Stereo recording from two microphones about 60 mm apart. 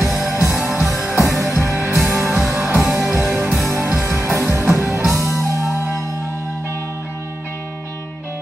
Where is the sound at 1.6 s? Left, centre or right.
Right.